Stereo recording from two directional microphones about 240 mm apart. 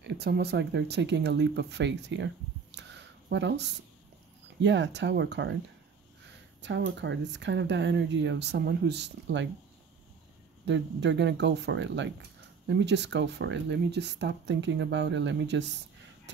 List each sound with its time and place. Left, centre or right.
0.0 s speech: right
2.7 s a sound: right
3.3 s speech: right
6.6 s speech: right
10.6 s speech: right